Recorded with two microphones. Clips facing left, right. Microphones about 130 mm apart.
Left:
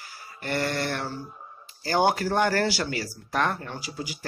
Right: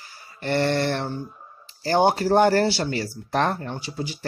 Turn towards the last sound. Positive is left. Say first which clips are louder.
# right 4 dB
turn(degrees=-30)  # may be behind; listen again after turning